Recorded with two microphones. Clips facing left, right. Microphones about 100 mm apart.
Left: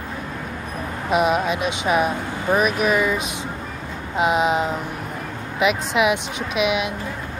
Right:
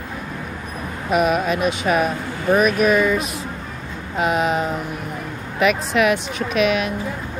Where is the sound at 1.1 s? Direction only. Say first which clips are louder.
Right 1 dB; 20° left (ahead or behind).